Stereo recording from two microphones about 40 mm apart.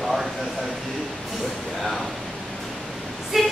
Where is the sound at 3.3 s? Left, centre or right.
Centre.